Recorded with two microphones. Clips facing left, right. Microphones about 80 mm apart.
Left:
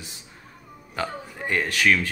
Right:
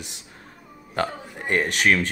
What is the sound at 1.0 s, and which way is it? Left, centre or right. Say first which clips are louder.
Speech: right 3 dB; right.